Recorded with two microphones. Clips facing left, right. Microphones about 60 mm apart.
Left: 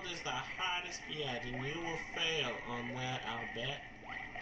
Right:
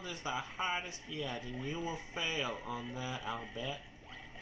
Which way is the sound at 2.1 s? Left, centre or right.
Right.